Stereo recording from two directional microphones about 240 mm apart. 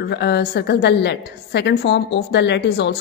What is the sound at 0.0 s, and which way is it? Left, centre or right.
A woman's voice, left.